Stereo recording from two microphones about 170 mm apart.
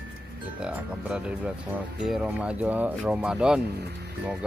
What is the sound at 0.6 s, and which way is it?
Speech, 5° right (ahead or behind).